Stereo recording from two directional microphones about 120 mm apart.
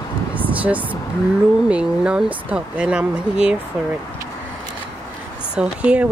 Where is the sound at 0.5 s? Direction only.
10° right (ahead or behind).